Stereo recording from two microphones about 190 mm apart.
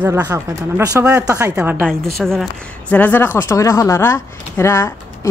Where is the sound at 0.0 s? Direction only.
10° right (ahead or behind).